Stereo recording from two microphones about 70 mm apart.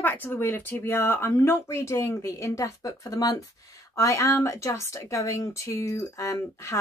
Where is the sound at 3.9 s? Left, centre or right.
Left.